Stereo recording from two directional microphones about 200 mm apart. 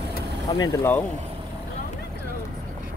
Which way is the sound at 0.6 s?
15° left (ahead or behind).